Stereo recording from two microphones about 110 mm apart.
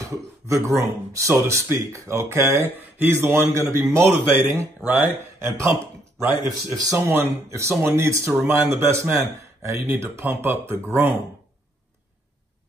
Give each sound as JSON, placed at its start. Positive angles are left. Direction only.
{"t": 0.0, "sound": "speech", "side_deg": -30}
{"t": 6.7, "sound": "speech", "side_deg": -30}